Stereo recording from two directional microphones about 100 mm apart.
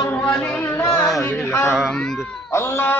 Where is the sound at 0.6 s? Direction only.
25° left (ahead or behind).